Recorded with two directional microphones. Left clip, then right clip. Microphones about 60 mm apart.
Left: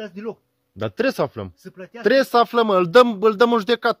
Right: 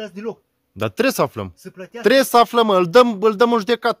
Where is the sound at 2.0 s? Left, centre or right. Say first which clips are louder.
Right 3 dB; right.